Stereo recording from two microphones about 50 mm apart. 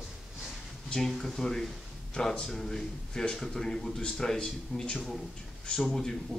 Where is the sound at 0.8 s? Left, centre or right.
Centre.